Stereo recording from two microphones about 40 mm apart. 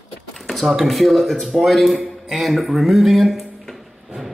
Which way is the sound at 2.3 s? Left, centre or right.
Centre.